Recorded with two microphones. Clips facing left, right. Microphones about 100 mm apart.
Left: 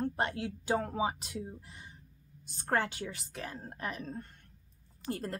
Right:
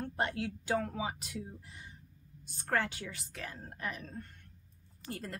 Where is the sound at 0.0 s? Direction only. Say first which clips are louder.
Left 2 dB; 25° left (ahead or behind).